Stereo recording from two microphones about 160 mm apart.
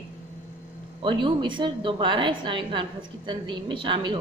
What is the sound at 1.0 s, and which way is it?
A woman's voice, 30° right (ahead or behind).